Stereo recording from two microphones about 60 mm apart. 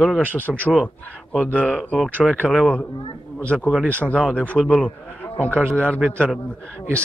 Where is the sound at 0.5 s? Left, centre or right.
Centre.